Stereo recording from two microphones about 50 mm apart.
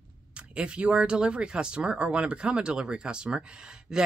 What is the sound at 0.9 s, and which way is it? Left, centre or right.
Speech, centre.